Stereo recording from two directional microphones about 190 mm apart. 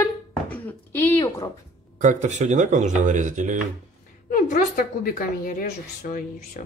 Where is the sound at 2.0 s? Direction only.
40° right (ahead or behind).